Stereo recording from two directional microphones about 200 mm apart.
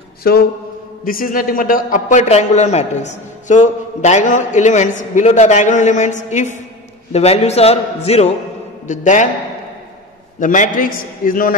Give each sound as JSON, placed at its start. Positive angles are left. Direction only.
{"t": 0.2, "sound": "a sound", "side_deg": 50}
{"t": 1.0, "sound": "speech", "side_deg": 45}
{"t": 10.4, "sound": "a man's voice", "side_deg": 40}